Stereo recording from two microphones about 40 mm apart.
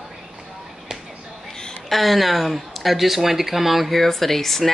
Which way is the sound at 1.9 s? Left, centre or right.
Centre.